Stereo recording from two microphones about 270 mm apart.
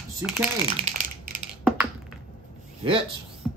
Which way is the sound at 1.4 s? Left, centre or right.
Centre.